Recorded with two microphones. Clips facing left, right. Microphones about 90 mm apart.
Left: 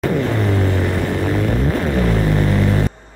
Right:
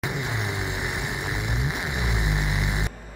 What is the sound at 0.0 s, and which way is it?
Vehicle, 15° right (ahead or behind).